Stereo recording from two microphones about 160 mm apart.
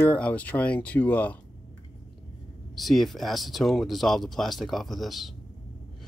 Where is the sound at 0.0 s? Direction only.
10° left (ahead or behind).